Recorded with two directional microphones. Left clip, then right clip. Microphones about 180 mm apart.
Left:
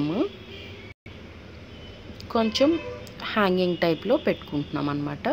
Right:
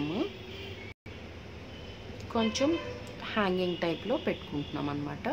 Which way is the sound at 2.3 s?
25° left (ahead or behind).